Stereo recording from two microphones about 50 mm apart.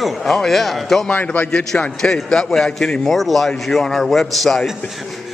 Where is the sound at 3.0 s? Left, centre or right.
Centre.